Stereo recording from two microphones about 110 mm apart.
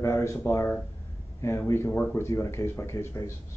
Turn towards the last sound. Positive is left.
turn(degrees=25)  # may be behind; listen again after turning